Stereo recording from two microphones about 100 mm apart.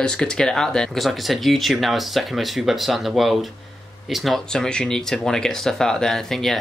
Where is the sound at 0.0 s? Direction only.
10° left (ahead or behind).